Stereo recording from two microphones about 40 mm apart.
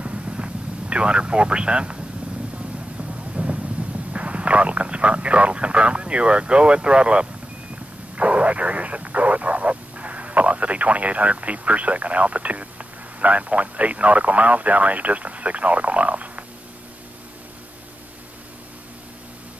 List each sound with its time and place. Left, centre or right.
0.0 s vehicle: right
3.0 s a sound: right
8.2 s speech: right